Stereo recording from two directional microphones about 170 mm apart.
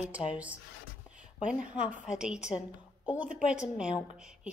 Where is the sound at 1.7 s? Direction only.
5° right (ahead or behind).